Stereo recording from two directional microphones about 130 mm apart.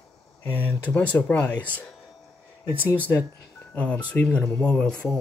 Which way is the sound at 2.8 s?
20° left (ahead or behind).